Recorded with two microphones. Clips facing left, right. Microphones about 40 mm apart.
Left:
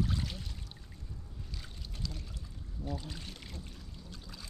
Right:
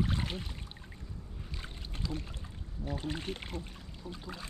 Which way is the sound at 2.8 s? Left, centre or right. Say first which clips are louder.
Right 5 dB; right.